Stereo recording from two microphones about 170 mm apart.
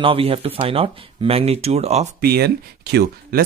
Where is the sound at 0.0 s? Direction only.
30° right (ahead or behind).